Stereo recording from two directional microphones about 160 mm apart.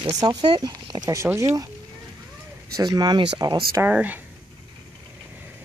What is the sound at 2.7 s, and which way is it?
Speech, 25° right (ahead or behind).